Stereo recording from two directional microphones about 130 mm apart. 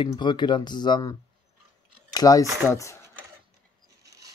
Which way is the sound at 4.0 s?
25° right (ahead or behind).